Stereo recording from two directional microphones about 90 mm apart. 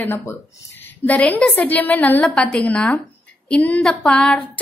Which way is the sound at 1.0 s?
20° left (ahead or behind).